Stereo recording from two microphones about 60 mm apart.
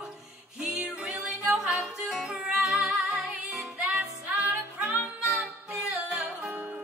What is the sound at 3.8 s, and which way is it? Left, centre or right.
Music, right.